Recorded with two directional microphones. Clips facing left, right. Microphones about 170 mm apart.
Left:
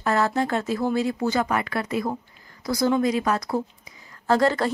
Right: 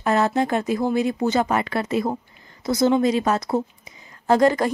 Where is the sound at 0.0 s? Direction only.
20° right (ahead or behind).